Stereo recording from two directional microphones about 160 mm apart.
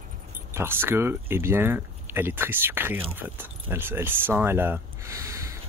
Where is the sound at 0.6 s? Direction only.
15° right (ahead or behind).